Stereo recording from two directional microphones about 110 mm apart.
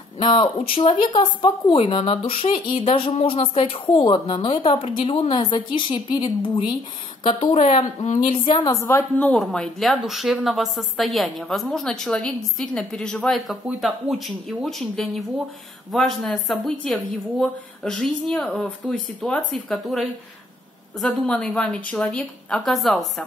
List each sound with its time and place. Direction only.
0.2 s speech: 50° left (ahead or behind)
7.2 s a woman's voice: 65° left (ahead or behind); by 8.2 s 85° left
8.2 s a woman's voice: 45° left (ahead or behind)
8.8 s a woman's voice: 25° left (ahead or behind)
9.3 s a woman's voice: 5° left (ahead or behind)